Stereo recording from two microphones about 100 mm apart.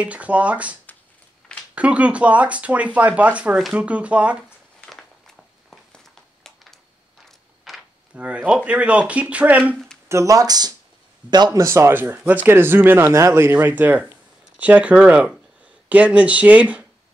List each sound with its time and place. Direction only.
0.0 s speech: 15° right (ahead or behind)
1.8 s speech: 15° right (ahead or behind)
4.8 s a sound: 5° left (ahead or behind)
8.1 s speech: 15° right (ahead or behind)
10.0 s speech: 30° right (ahead or behind)
11.6 s speech: 25° right (ahead or behind)